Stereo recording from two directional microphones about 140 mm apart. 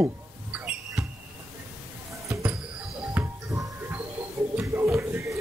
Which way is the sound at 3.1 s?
20° right (ahead or behind).